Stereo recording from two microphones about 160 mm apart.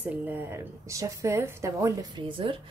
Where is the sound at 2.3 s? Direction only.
30° right (ahead or behind).